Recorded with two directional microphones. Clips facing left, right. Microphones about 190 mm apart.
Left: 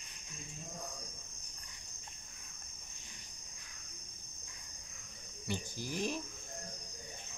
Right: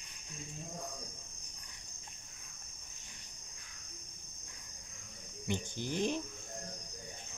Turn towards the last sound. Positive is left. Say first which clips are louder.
# right 3 dB
turn(degrees=-25)  # may be behind; listen again after turning